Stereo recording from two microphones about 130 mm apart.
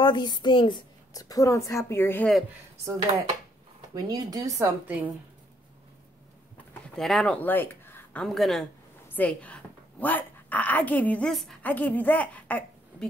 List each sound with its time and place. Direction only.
0.0 s speech: 35° left (ahead or behind); by 2.2 s 20° left (ahead or behind)
2.8 s speech: 25° right (ahead or behind)
7.0 s speech: centre (ahead or behind)
9.1 s a woman's voice: 10° left (ahead or behind)